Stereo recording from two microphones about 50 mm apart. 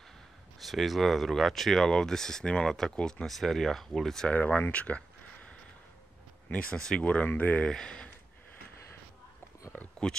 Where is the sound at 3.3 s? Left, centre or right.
Centre.